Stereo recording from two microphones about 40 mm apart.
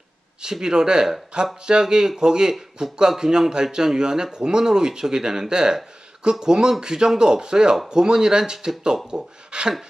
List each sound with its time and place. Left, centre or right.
0.4 s speech: centre